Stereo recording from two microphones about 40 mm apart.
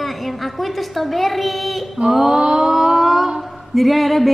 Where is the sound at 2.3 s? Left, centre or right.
Right.